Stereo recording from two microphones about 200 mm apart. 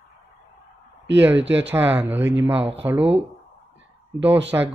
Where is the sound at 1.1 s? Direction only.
10° right (ahead or behind).